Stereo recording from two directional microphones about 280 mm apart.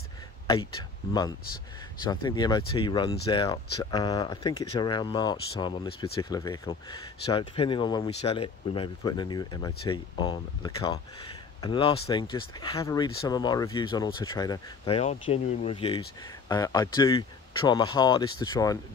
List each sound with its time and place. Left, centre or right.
2.0 s speech: centre